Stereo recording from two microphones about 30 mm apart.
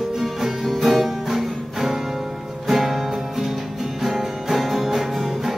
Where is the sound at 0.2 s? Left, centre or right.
Centre.